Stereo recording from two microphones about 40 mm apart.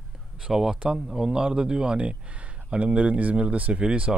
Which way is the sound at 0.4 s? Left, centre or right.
Centre.